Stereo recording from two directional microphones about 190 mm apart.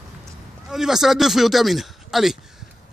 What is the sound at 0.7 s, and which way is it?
Speech, centre (ahead or behind).